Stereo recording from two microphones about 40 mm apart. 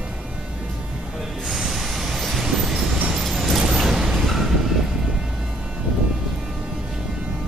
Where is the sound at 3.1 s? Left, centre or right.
Centre.